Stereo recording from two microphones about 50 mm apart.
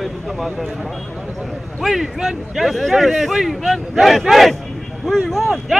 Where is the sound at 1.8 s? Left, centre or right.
Centre.